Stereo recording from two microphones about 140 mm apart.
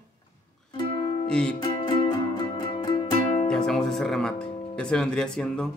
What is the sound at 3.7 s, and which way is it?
Speech, 5° left (ahead or behind).